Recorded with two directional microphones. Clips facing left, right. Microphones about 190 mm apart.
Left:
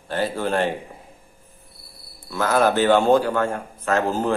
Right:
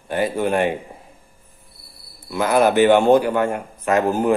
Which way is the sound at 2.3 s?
15° right (ahead or behind).